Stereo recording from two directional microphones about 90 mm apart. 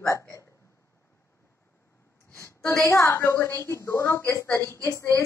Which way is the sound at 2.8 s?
35° left (ahead or behind).